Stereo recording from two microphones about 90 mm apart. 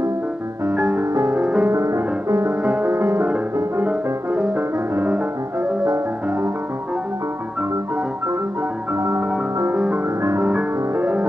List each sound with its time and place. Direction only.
1.3 s music: 10° right (ahead or behind)
1.7 s music: 35° right (ahead or behind)
3.8 s music: 20° right (ahead or behind)
8.9 s music: 30° right (ahead or behind)
10.2 s music: 30° right (ahead or behind)
10.5 s music: 15° right (ahead or behind)